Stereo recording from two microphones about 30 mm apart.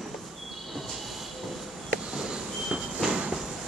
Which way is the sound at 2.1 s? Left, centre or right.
Right.